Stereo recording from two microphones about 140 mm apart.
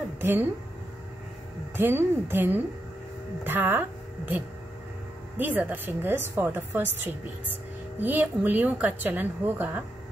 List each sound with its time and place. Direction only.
0.2 s speech: 15° right (ahead or behind)
1.8 s a woman's voice: 15° right (ahead or behind)
5.4 s a woman's voice: 15° right (ahead or behind)